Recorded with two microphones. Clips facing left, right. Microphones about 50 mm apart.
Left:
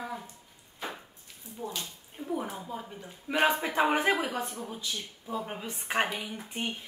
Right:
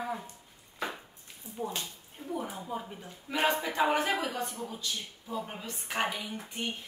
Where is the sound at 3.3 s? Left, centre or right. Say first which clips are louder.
Left 3 dB; left.